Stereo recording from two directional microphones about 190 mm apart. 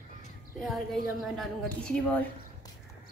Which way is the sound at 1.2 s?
Centre (ahead or behind).